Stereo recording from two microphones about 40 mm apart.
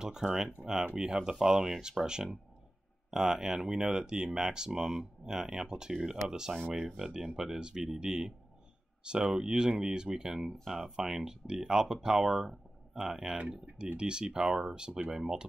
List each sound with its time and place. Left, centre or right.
0.0 s speech: centre
3.1 s speech: centre
9.0 s speech: right
10.6 s speech: centre
12.4 s a sound: centre
13.1 s speech: centre